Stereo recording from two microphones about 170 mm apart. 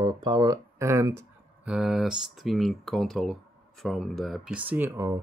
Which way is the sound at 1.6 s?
5° right (ahead or behind).